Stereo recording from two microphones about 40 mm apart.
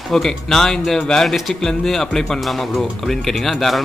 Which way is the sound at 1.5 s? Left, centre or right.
Centre.